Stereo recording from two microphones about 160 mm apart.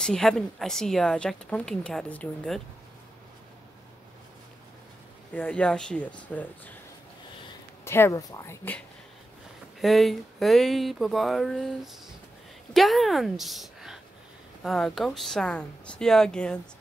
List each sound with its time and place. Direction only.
0.0 s a woman's voice: 5° left (ahead or behind)
5.3 s speech: 10° left (ahead or behind)
7.8 s speech: 15° left (ahead or behind)
9.8 s a woman's voice: centre (ahead or behind)